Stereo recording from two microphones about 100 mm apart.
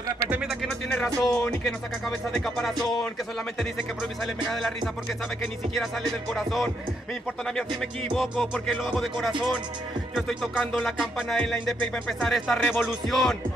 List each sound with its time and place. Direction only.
0.3 s music: 5° right (ahead or behind)
1.6 s speech: 5° left (ahead or behind)
6.3 s speech: centre (ahead or behind)
10.6 s music: 5° left (ahead or behind)
11.0 s speech: centre (ahead or behind)